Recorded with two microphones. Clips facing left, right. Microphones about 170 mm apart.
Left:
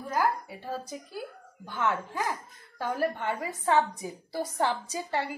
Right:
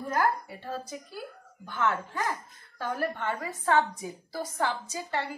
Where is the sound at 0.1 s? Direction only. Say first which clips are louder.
Even; 5° left (ahead or behind).